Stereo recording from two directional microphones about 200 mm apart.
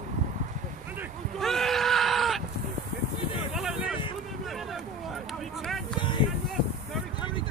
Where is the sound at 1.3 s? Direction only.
Centre (ahead or behind).